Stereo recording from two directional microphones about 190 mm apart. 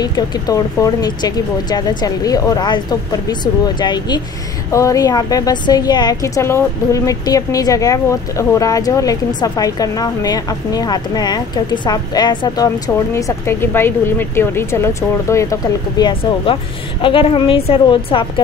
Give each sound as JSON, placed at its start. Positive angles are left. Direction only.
{"t": 0.0, "sound": "speech", "side_deg": 20}
{"t": 17.0, "sound": "speech", "side_deg": 30}